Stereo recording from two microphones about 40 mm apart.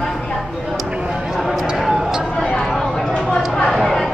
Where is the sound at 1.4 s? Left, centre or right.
Centre.